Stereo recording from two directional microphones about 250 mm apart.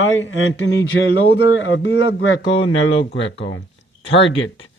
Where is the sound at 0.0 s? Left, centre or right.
Left.